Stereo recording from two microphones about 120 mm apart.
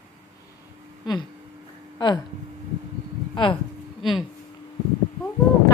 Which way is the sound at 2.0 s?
40° left (ahead or behind).